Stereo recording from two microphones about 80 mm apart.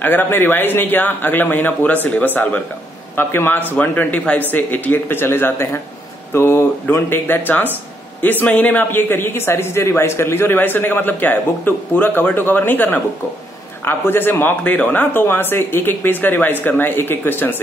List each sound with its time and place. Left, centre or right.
0.0 s a man's voice: left